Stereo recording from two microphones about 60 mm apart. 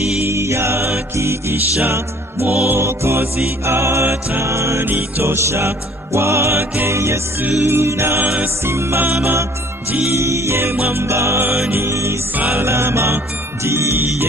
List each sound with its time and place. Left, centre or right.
0.3 s mantra: right
1.9 s music: right
2.8 s music: right
4.8 s music: right
5.3 s music: right
12.4 s music: right
12.6 s music: right